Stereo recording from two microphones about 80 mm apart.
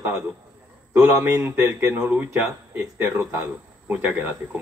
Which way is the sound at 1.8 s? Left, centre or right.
Centre.